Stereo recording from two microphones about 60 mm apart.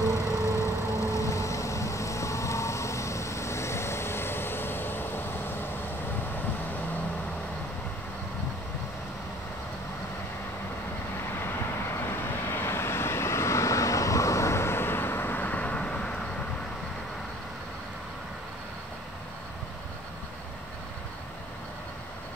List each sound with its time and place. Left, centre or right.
0.5 s vehicle: left
11.9 s vehicle: left; by 16.3 s centre